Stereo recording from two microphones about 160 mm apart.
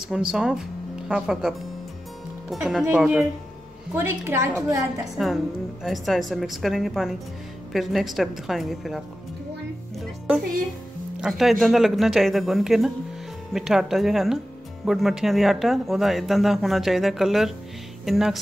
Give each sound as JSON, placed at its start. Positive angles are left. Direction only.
{"t": 0.3, "sound": "speech", "side_deg": -5}
{"t": 2.5, "sound": "speech", "side_deg": 0}
{"t": 3.9, "sound": "a woman's voice", "side_deg": -15}
{"t": 5.1, "sound": "speech", "side_deg": 0}
{"t": 11.1, "sound": "speech", "side_deg": 0}